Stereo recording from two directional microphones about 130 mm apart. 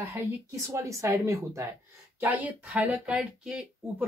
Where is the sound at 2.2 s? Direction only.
10° right (ahead or behind).